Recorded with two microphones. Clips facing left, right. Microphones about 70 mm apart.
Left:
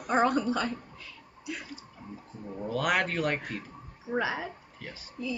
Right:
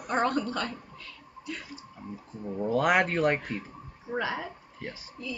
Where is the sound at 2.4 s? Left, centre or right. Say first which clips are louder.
Right 4 dB; centre.